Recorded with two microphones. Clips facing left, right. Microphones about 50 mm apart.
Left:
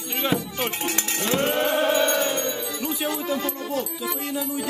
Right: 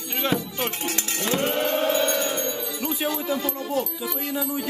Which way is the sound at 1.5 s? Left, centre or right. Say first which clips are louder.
Left 2 dB; centre.